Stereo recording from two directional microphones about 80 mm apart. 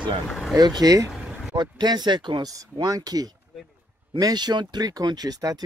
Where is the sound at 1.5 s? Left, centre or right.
Right.